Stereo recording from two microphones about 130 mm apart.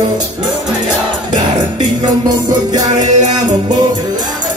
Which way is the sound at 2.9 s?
70° right (ahead or behind).